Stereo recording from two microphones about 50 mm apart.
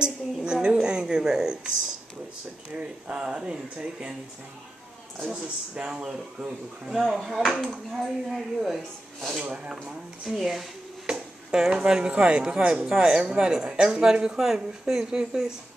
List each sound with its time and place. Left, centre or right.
0.0 s a sound: centre
2.7 s speech: right
5.3 s speech: centre
6.9 s speech: centre
9.4 s speech: right
10.3 s speech: centre
11.1 s a sound: centre
11.7 s speech: centre